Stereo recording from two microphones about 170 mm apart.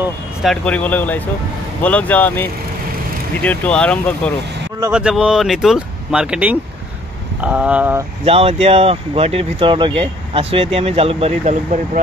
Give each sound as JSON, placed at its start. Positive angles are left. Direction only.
{"t": 0.4, "sound": "speech", "side_deg": 5}
{"t": 3.4, "sound": "speech", "side_deg": 5}
{"t": 4.9, "sound": "speech", "side_deg": -5}
{"t": 8.3, "sound": "speech", "side_deg": -35}